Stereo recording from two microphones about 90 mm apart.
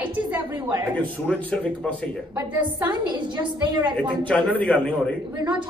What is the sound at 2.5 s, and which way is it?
Speech, 55° right (ahead or behind).